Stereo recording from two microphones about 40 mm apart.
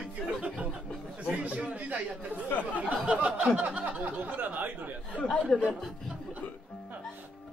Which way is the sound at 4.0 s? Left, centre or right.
Right.